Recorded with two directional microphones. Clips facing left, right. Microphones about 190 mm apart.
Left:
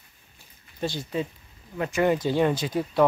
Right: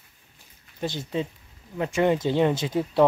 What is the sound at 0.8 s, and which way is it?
Speech, 20° right (ahead or behind).